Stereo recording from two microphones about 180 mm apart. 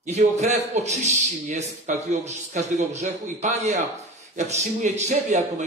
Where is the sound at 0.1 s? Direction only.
40° right (ahead or behind).